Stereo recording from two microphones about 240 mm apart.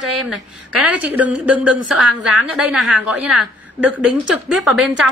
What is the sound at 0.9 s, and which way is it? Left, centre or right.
A woman's voice, centre.